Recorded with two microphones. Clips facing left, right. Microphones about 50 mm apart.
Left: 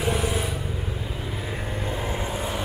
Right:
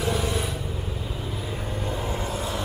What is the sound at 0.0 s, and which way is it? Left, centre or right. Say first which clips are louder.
Vehicle: left 1 dB; centre.